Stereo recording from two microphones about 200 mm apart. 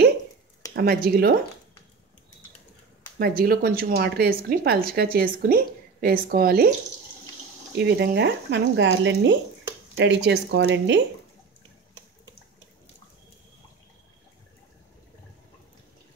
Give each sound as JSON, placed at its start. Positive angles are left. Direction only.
{"t": 0.7, "sound": "speech", "side_deg": -50}
{"t": 3.2, "sound": "speech", "side_deg": -50}
{"t": 7.7, "sound": "speech", "side_deg": -55}